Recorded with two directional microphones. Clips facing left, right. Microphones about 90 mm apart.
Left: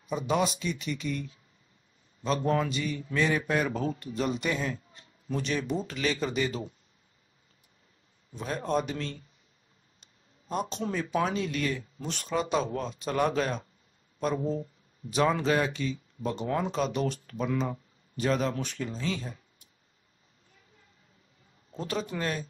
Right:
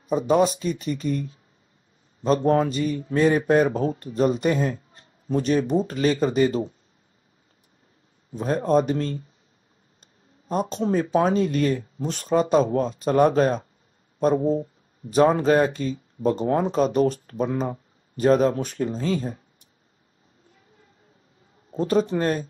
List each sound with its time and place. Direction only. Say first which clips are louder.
0.0 s speech: right 8 dB; 40° right (ahead or behind)
8.3 s speech: right 9 dB; 40° right (ahead or behind)
10.5 s speech: right 8 dB; 40° right (ahead or behind)
21.7 s speech: right 11 dB; 40° right (ahead or behind)